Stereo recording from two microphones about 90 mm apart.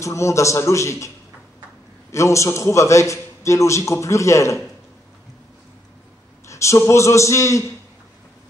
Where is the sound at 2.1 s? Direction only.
35° left (ahead or behind).